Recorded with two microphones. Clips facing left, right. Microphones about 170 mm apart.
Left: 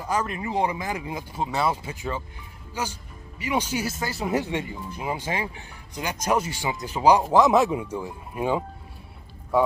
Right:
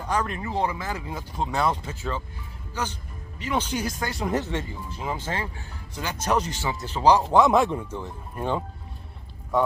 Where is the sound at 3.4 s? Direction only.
10° left (ahead or behind).